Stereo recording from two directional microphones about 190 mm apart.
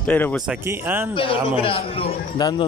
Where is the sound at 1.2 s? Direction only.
30° left (ahead or behind).